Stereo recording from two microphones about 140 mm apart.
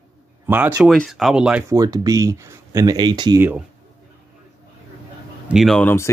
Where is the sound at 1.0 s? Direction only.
Centre (ahead or behind).